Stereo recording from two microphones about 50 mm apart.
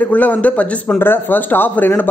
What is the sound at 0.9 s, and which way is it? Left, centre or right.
A man's voice, left.